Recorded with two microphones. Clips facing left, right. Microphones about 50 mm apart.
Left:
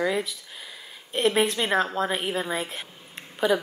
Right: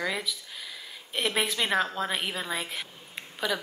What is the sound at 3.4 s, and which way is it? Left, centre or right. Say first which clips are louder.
Speech: left 7 dB; left.